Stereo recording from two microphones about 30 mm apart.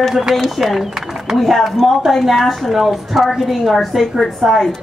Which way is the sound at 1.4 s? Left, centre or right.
Centre.